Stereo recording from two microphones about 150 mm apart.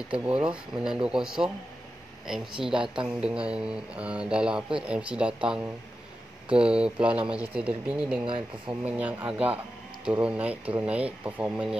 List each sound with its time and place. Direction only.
0.1 s speech: 10° right (ahead or behind)
8.3 s speech: 35° right (ahead or behind)
8.8 s speech: 10° right (ahead or behind)